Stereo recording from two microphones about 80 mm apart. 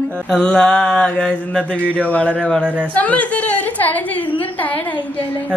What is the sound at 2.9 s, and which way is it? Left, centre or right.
A woman's voice, centre.